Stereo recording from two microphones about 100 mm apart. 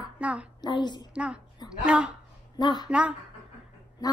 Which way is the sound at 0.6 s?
50° left (ahead or behind).